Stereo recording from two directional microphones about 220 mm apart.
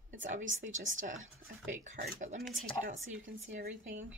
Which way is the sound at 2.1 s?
30° right (ahead or behind).